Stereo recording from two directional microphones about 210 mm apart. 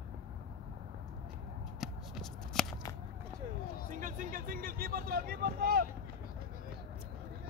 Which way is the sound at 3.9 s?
40° right (ahead or behind).